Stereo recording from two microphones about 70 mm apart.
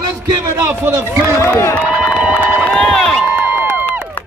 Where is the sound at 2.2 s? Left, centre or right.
Right.